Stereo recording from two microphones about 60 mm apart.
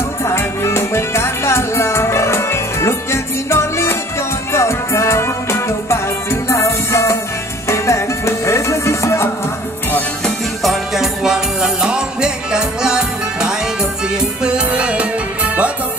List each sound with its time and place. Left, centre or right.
0.2 s music: left
10.6 s music: centre; by 15.7 s right